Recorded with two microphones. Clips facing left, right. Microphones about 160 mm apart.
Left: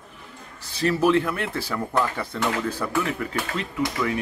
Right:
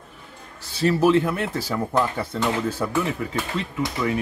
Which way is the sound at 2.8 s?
15° right (ahead or behind).